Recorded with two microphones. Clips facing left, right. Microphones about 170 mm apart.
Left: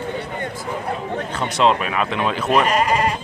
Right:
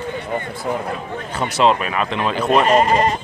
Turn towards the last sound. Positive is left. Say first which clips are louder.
# right 4 dB
turn(degrees=-35)  # may be behind; listen again after turning